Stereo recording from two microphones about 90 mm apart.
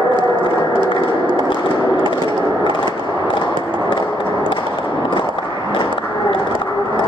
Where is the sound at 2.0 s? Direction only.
60° left (ahead or behind).